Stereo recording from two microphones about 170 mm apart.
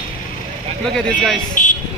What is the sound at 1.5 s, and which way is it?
Vehicle, 50° left (ahead or behind).